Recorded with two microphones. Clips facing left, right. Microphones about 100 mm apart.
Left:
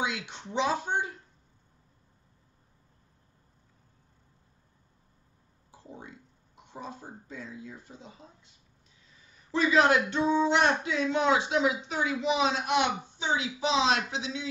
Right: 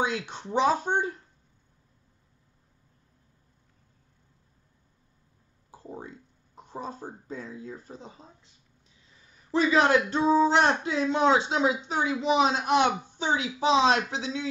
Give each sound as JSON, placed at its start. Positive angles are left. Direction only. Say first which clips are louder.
{"t": 0.0, "sound": "speech", "louder": "right 4 dB", "side_deg": -40}
{"t": 5.7, "sound": "speech", "louder": "right 5 dB", "side_deg": -40}
{"t": 9.5, "sound": "speech", "louder": "right 2 dB", "side_deg": -30}